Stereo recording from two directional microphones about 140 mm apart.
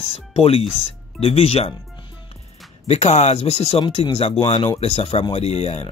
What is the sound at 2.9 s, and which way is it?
Speech, 50° left (ahead or behind).